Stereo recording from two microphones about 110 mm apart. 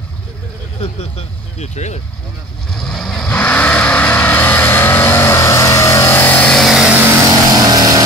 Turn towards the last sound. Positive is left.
turn(degrees=-35)  # may be behind; listen again after turning